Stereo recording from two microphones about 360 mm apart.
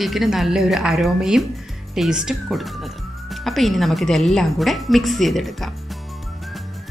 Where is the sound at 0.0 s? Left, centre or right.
Centre.